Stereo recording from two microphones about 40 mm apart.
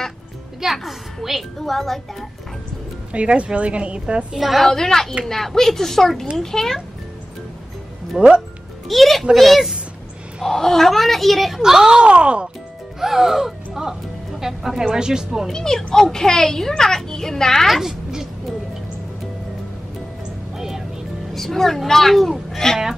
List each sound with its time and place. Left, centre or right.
0.6 s a woman's voice: centre
1.7 s a woman's voice: centre
3.1 s speech: right
4.3 s a woman's voice: centre
4.6 s a child's voice: centre
8.2 s speech: centre
8.8 s a child's voice: centre
11.6 s speech: centre
13.0 s speech: centre
15.5 s a child's voice: centre
17.6 s a woman's voice: centre
20.5 s music: centre
21.3 s a child's voice: centre